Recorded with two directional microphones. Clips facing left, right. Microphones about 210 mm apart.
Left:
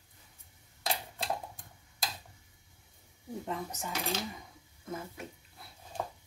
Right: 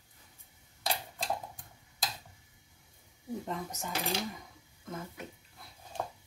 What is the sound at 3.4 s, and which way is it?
Speech, centre (ahead or behind).